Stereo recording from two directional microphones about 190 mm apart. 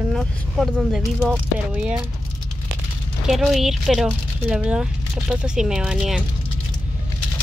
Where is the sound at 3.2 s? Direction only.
Centre (ahead or behind).